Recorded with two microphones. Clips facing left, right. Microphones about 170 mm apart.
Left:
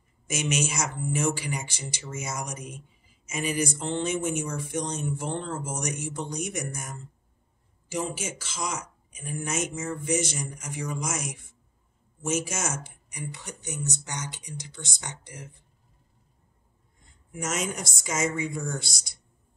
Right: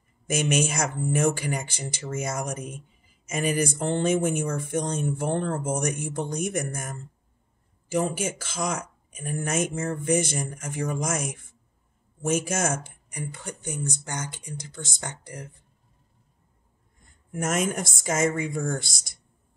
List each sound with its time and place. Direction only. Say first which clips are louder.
0.3 s speech: right 4 dB; 55° right (ahead or behind)
17.3 s speech: right 5 dB; 50° right (ahead or behind)